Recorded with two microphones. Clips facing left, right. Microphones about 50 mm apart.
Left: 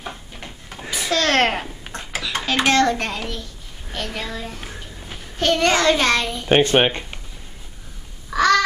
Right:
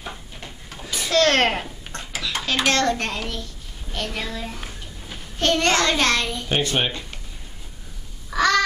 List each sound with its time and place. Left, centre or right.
0.7 s a sound: centre
1.1 s a child's voice: centre
1.9 s a sound: centre
2.5 s a child's voice: left
2.8 s child singing: centre
4.6 s a sound: centre
5.4 s child singing: centre
6.5 s speech: left
8.3 s crow: centre